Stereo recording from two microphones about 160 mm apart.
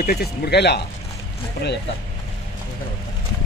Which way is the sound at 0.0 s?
75° left (ahead or behind).